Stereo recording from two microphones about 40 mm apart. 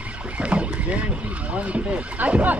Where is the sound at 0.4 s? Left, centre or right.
Right.